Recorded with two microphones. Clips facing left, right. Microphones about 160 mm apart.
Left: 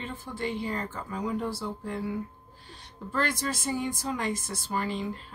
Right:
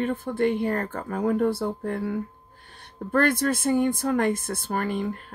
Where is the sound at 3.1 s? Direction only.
55° right (ahead or behind).